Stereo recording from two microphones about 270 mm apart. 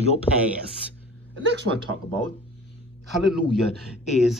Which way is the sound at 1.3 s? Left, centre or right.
Right.